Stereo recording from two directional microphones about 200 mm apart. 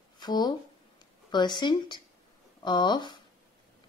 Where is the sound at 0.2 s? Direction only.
20° left (ahead or behind).